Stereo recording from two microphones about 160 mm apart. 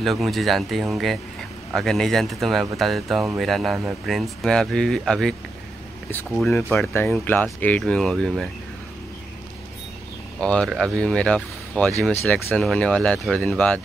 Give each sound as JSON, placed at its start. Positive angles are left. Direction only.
{"t": 0.0, "sound": "speech", "side_deg": 0}
{"t": 6.5, "sound": "speech", "side_deg": 10}
{"t": 10.4, "sound": "speech", "side_deg": 5}